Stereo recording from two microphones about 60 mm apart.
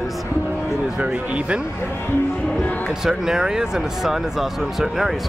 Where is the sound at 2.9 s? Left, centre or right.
Centre.